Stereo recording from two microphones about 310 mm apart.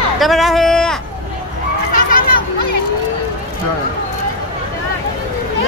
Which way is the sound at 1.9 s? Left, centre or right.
Left.